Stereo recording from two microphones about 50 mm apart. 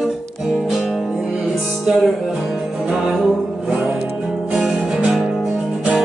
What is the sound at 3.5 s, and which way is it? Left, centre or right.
Music, centre.